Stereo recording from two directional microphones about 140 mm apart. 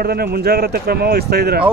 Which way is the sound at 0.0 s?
90° right.